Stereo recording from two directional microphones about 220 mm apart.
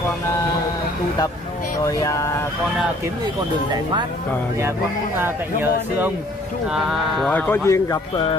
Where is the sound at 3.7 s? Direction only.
20° right (ahead or behind).